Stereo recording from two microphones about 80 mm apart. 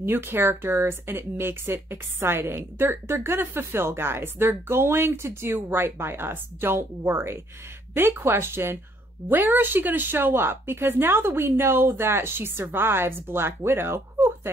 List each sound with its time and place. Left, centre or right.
0.0 s speech: right